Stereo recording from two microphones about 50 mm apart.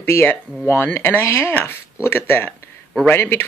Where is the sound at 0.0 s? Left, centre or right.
Left.